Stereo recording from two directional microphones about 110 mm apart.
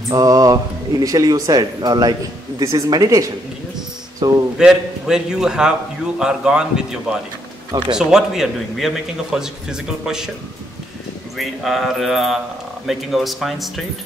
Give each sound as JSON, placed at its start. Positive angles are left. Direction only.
{"t": 0.1, "sound": "speech", "side_deg": -35}
{"t": 4.6, "sound": "a man's voice", "side_deg": -5}
{"t": 11.3, "sound": "a man's voice", "side_deg": 0}